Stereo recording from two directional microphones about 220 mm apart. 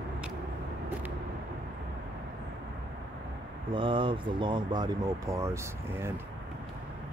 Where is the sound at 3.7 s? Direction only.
20° right (ahead or behind).